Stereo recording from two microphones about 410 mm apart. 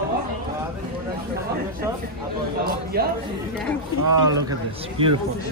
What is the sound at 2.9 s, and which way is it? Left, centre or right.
Speech, right.